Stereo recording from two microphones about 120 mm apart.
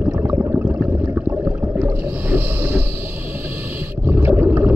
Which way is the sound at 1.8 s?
15° right (ahead or behind).